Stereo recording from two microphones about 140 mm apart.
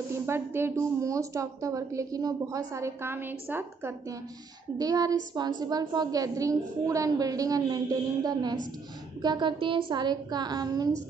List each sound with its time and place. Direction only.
0.1 s a woman's voice: 15° right (ahead or behind)
4.7 s a woman's voice: 25° right (ahead or behind)